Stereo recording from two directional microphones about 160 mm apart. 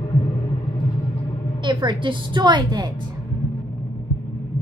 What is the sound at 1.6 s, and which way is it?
A woman's voice, 30° right (ahead or behind).